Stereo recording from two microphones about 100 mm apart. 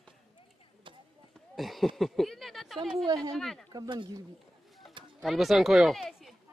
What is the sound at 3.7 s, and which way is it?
Speech, 50° right (ahead or behind).